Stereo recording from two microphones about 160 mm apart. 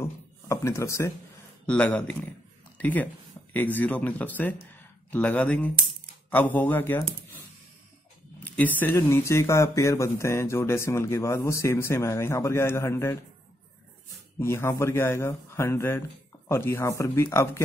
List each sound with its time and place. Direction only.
0.0 s a sound: 20° left (ahead or behind)
1.7 s speech: 10° left (ahead or behind)
8.4 s speech: 10° left (ahead or behind)
14.4 s speech: 15° left (ahead or behind)